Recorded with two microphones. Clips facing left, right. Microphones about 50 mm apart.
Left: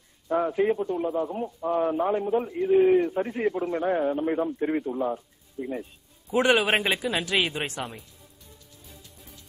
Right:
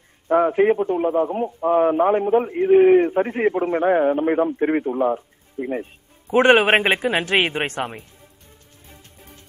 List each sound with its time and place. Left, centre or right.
0.3 s a man's voice: right
5.1 s music: right